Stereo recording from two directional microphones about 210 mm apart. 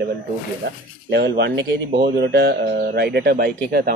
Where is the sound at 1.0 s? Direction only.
55° right (ahead or behind).